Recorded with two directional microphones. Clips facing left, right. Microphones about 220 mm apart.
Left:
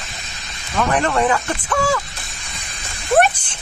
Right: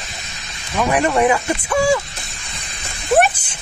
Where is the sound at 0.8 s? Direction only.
10° right (ahead or behind).